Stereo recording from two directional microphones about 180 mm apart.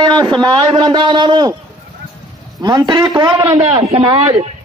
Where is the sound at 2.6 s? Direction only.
20° right (ahead or behind).